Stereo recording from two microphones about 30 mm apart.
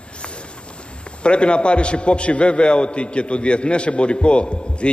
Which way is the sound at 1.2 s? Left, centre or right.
Left.